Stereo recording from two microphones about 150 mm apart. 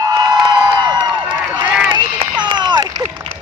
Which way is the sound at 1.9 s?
30° right (ahead or behind).